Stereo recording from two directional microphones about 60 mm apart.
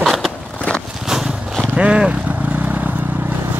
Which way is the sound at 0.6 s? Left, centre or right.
Centre.